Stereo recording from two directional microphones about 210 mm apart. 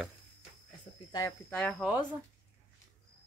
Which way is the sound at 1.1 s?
15° left (ahead or behind).